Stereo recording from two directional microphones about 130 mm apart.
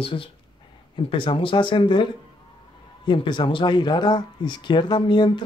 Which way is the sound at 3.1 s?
40° left (ahead or behind).